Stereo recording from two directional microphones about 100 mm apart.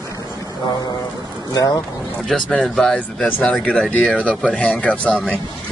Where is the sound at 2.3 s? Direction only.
5° left (ahead or behind).